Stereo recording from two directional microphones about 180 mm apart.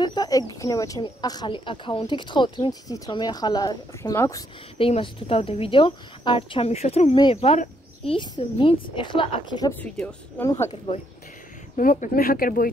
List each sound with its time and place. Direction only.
0.0 s speech: 20° left (ahead or behind)
4.7 s a woman's voice: 30° left (ahead or behind)
10.0 s speech: 10° left (ahead or behind)
10.9 s speech: 25° left (ahead or behind)
11.7 s speech: 45° left (ahead or behind)